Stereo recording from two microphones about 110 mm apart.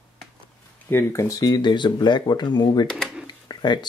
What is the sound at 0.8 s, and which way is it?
Speech, 25° left (ahead or behind).